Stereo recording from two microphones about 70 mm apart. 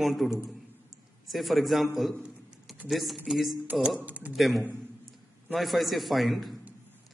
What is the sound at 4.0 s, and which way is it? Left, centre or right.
Speech, right.